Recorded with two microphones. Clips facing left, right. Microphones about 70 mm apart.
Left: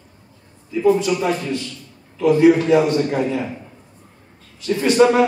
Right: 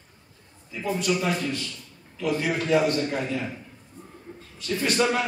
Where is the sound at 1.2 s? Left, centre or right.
Left.